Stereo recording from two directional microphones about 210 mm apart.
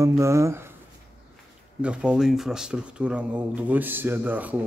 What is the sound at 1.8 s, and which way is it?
Speech, 5° right (ahead or behind).